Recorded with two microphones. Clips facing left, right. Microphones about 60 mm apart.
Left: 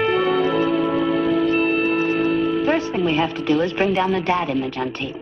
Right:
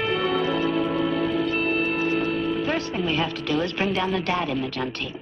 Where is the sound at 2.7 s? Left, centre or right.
Centre.